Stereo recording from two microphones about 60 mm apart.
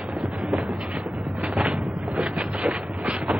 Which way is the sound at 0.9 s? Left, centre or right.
Right.